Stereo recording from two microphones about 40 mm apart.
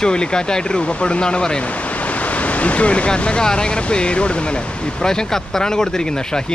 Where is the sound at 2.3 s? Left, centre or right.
Left.